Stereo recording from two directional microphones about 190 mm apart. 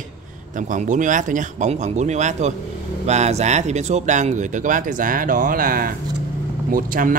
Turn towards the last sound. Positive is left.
turn(degrees=-45)  # may be behind; listen again after turning